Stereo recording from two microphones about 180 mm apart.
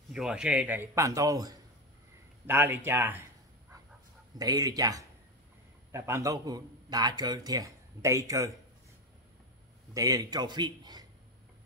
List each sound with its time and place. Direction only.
0.1 s a man's voice: 5° right (ahead or behind)
4.4 s a man's voice: 20° right (ahead or behind)
9.9 s a man's voice: 20° right (ahead or behind)